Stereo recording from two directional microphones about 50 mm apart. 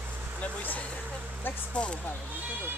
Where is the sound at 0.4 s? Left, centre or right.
Left.